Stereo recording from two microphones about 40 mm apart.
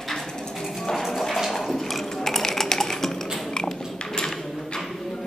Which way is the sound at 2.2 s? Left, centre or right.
Centre.